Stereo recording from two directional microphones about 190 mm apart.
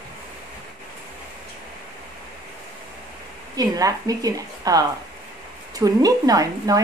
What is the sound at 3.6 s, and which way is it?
A woman's voice, 20° right (ahead or behind).